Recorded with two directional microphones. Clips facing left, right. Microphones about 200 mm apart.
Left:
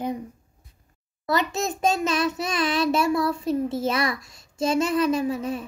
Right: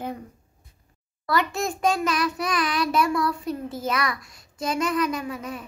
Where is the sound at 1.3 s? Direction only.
20° left (ahead or behind).